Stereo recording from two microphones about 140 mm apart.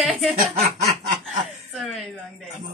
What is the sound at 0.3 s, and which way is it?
Speech, 45° right (ahead or behind).